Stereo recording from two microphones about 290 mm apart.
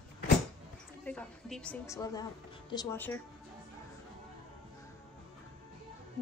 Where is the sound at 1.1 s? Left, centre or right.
Centre.